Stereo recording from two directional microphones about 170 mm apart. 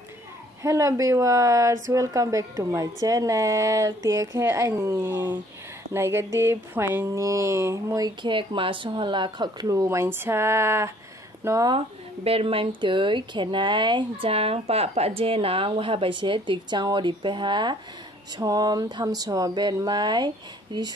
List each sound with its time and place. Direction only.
0.6 s speech: 15° right (ahead or behind)
11.7 s speech: 35° right (ahead or behind)